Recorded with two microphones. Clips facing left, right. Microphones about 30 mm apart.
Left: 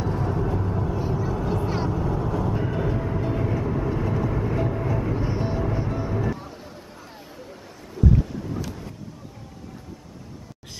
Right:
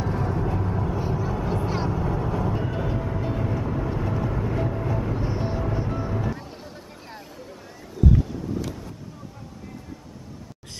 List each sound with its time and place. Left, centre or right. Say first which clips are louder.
0.0 s vehicle: even; centre